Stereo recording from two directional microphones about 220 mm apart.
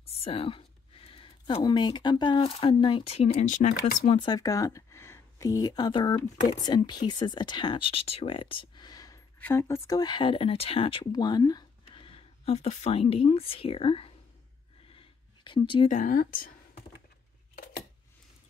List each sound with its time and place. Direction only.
0.2 s speech: 25° left (ahead or behind)
14.9 s a sound: 20° left (ahead or behind)
15.9 s speech: 35° left (ahead or behind)